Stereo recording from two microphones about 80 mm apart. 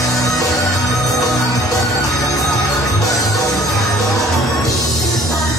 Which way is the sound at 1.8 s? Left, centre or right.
Centre.